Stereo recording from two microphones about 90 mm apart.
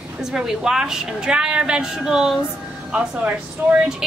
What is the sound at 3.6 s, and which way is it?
Speech, 20° right (ahead or behind).